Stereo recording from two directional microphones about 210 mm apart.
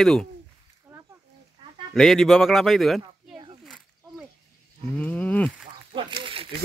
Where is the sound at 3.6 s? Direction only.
Centre (ahead or behind).